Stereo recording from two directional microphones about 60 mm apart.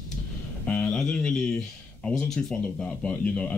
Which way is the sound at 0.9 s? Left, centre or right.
Centre.